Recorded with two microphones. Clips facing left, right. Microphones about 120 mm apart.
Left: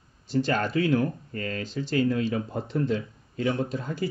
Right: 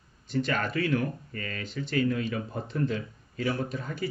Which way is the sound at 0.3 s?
30° left (ahead or behind).